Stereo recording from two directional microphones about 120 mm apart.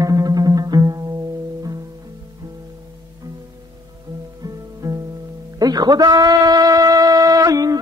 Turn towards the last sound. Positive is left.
turn(degrees=-30)  # may be behind; listen again after turning